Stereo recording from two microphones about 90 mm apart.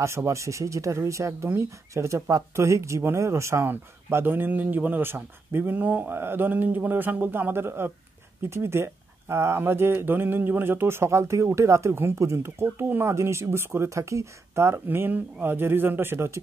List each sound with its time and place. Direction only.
0.0 s speech: 30° right (ahead or behind)